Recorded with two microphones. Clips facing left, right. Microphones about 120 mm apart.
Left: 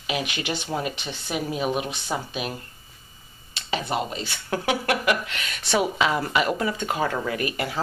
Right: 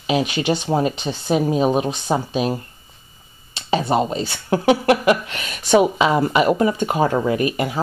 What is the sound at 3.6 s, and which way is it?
Speech, 30° right (ahead or behind).